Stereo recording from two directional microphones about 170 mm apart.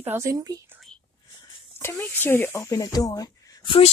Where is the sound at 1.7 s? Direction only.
15° left (ahead or behind).